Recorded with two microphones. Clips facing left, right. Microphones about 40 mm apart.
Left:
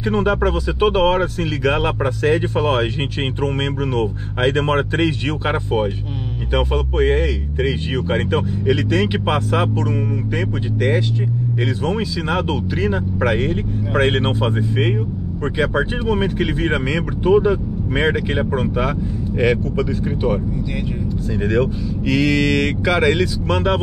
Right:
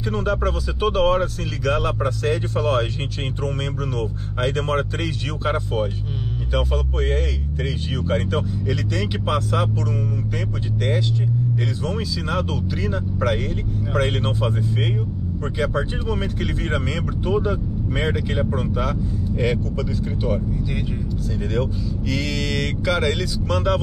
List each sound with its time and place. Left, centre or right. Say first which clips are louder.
0.1 s speech: left 5 dB; left
4.4 s speech: left 5 dB; left
11.8 s speech: left 5 dB; left
21.4 s speech: left 7 dB; left